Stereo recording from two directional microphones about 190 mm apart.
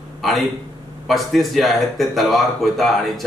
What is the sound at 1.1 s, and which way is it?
Speech, centre (ahead or behind).